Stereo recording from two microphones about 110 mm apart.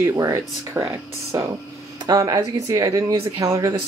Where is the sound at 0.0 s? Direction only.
25° right (ahead or behind).